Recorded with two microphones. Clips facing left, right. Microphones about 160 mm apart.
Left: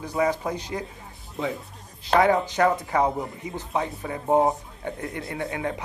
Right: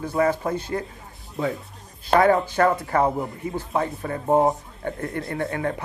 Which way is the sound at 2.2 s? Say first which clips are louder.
Right 2 dB; 15° left (ahead or behind).